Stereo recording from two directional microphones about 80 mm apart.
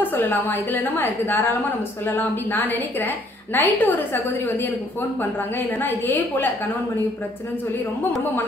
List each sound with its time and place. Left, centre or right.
0.0 s a woman's voice: left
5.8 s a woman's voice: left